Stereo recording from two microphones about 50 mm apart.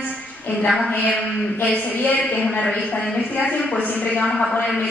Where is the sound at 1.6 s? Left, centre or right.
Left.